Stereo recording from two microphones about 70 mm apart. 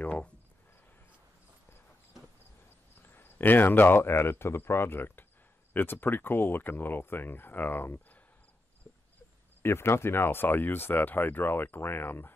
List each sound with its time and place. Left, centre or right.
0.0 s speech: centre
3.1 s speech: left
9.6 s speech: left